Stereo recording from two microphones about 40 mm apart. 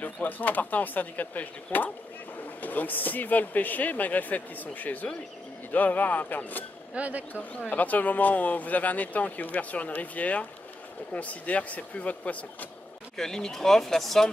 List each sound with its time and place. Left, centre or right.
0.0 s speech: left
6.9 s speech: right
7.7 s speech: left
13.2 s speech: centre